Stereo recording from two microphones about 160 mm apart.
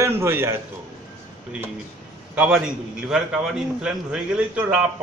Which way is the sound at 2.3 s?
5° right (ahead or behind).